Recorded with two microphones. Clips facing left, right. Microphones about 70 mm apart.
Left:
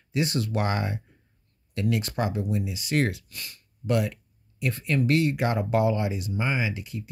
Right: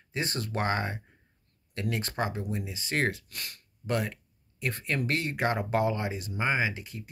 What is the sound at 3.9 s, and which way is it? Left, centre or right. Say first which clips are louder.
Speech: left 5 dB; right.